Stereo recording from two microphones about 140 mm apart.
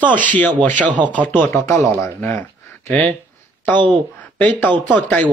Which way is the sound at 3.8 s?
35° right (ahead or behind).